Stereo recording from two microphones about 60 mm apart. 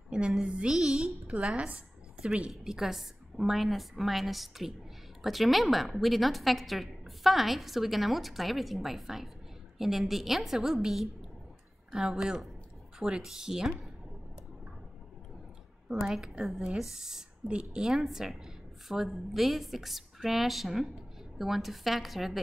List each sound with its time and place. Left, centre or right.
0.1 s a sound: centre
0.5 s speech: centre
1.2 s a sound: right
1.6 s a woman's voice: centre
2.5 s a woman's voice: centre
16.1 s a woman's voice: centre